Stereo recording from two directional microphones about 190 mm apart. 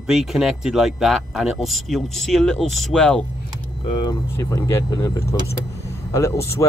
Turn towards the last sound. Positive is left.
turn(degrees=15)  # may be behind; listen again after turning